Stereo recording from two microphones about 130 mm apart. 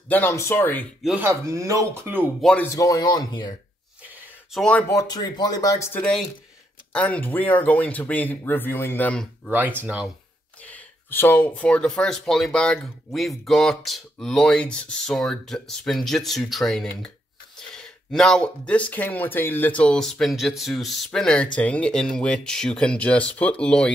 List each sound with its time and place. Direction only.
0.1 s speech: 20° left (ahead or behind)
1.2 s speech: 25° right (ahead or behind)
2.7 s speech: 25° left (ahead or behind)
4.5 s speech: 5° left (ahead or behind)
4.8 s speech: 30° left (ahead or behind)
5.9 s speech: 5° left (ahead or behind)
9.5 s speech: 15° right (ahead or behind)
10.6 s speech: 15° left (ahead or behind)